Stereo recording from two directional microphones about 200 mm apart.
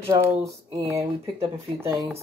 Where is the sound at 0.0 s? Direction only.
15° right (ahead or behind).